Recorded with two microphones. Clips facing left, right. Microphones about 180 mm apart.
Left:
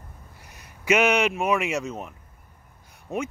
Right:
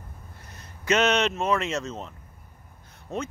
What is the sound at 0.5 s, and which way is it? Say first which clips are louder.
Speech: left 2 dB; 15° left (ahead or behind).